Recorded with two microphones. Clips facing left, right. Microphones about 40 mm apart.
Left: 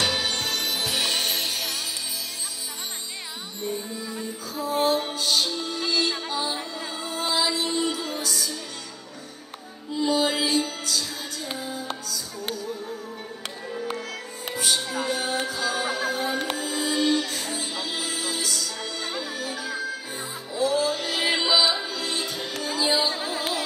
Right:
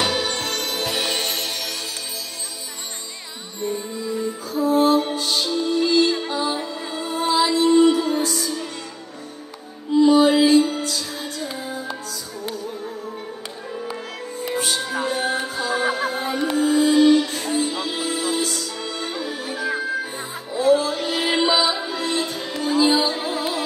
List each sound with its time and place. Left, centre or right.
0.4 s music: centre
0.9 s music: centre
4.5 s music: right
10.0 s music: right
14.5 s music: right